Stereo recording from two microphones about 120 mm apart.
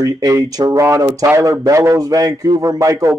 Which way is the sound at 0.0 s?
30° right (ahead or behind).